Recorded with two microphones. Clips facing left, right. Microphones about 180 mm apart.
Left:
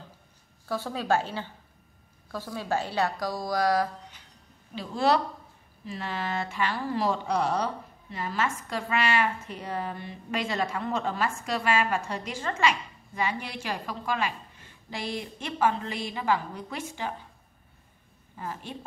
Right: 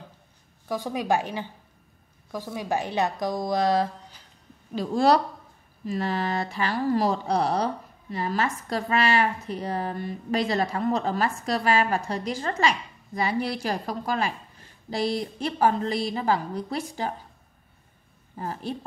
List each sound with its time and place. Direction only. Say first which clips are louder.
0.7 s a woman's voice: right 2 dB; 15° right (ahead or behind)
4.7 s speech: right 4 dB; 40° right (ahead or behind)
18.3 s speech: right 5 dB; 35° right (ahead or behind)